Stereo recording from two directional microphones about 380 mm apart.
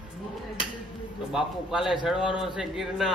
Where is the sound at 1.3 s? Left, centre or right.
Centre.